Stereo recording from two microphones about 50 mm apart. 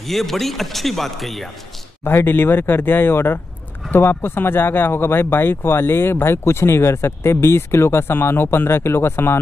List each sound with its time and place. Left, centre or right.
0.0 s a man's voice: centre
2.0 s speech: left